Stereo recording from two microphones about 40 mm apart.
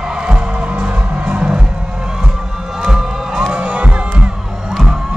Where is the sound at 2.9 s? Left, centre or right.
Centre.